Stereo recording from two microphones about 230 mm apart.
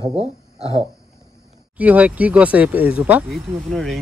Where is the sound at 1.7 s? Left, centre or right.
Centre.